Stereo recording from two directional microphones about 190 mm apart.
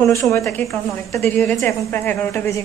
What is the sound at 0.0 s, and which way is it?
A woman's voice, 15° left (ahead or behind).